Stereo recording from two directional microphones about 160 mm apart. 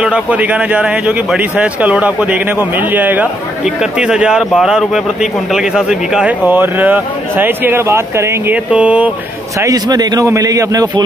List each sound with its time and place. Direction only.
0.0 s speech: 10° right (ahead or behind)
9.6 s a man's voice: 20° right (ahead or behind)